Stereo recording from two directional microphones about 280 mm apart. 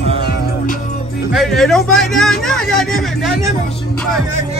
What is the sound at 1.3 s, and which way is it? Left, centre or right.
A man's voice, centre.